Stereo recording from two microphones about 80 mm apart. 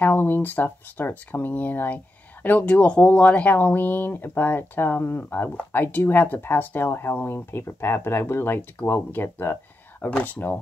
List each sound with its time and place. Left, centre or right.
0.0 s speech: left
10.0 s speech: centre